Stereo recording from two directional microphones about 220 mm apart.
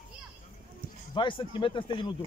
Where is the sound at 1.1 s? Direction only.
20° left (ahead or behind).